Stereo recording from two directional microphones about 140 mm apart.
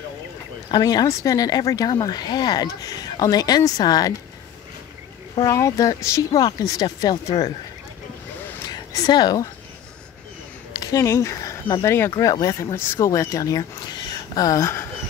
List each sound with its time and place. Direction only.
0.7 s speech: 30° left (ahead or behind)
5.4 s speech: 25° left (ahead or behind)
8.6 s speech: 30° left (ahead or behind)
10.8 s speech: 25° left (ahead or behind)